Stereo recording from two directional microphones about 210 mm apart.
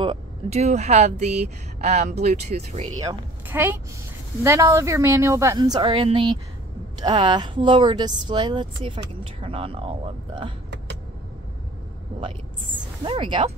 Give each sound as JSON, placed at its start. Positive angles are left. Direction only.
{"t": 0.0, "sound": "speech", "side_deg": -30}
{"t": 3.0, "sound": "a woman's voice", "side_deg": -15}
{"t": 13.0, "sound": "speech", "side_deg": -25}